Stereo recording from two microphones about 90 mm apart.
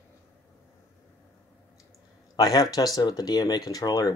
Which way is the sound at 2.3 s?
40° left (ahead or behind).